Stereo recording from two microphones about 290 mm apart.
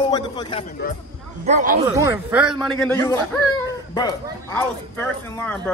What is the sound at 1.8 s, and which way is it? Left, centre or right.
A man's voice, centre.